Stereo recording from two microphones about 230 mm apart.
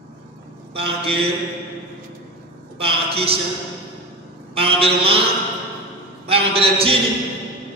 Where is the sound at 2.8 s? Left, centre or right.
Right.